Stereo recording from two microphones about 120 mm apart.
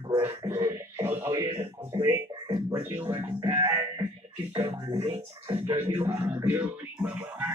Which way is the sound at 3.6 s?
20° right (ahead or behind).